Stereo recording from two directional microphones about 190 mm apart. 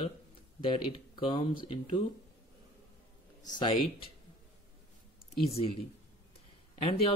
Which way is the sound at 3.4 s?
20° left (ahead or behind).